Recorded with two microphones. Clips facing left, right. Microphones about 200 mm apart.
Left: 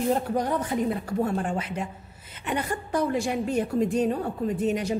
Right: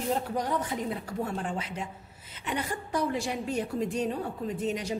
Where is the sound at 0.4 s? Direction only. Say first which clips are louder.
Left 5 dB; 50° left (ahead or behind).